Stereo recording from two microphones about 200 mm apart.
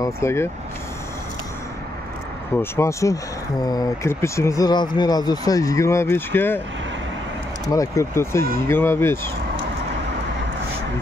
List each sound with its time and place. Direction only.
0.0 s speech: 15° left (ahead or behind)
2.5 s speech: 10° left (ahead or behind)
7.7 s speech: 15° left (ahead or behind)